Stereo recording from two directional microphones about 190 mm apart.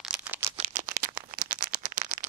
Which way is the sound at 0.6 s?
40° right (ahead or behind).